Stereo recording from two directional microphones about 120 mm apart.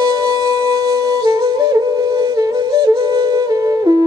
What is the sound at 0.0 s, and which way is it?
Music, 35° right (ahead or behind).